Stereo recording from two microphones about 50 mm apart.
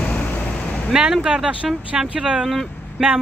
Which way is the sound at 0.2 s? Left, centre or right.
Left.